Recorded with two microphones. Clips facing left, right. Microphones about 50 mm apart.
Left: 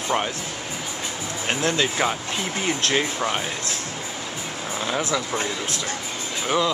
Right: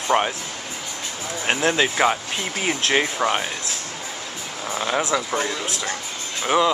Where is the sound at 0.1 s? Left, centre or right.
Right.